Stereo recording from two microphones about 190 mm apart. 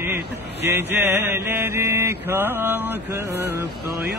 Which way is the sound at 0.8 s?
10° right (ahead or behind).